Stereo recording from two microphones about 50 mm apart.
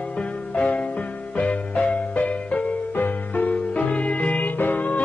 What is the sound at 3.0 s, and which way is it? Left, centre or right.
Music, left.